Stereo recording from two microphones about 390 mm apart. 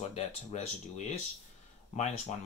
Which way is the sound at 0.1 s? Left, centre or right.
Centre.